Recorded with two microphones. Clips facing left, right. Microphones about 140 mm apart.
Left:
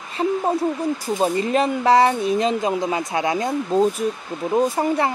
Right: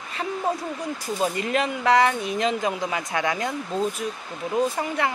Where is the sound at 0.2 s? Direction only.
30° left (ahead or behind).